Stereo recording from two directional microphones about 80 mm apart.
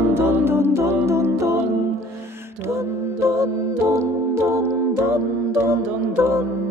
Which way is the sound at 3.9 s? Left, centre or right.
Right.